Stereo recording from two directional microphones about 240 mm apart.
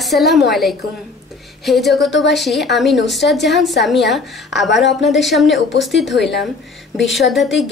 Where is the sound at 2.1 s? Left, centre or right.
Left.